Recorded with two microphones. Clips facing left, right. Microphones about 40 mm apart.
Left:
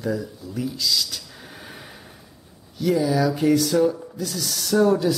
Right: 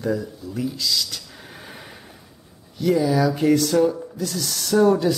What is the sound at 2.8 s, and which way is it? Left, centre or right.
Speech, centre.